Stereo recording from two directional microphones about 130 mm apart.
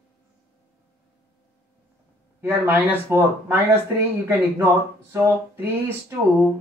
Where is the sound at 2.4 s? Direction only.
15° right (ahead or behind).